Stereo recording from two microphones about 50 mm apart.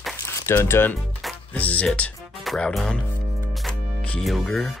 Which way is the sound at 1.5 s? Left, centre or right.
Left.